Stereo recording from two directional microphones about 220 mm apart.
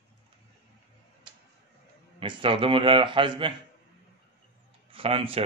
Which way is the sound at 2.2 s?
25° right (ahead or behind).